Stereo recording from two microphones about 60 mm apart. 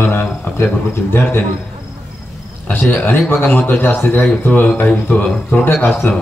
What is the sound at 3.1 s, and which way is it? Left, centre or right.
A man's voice, left.